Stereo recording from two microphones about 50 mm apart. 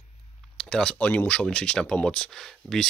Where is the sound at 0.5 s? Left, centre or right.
Centre.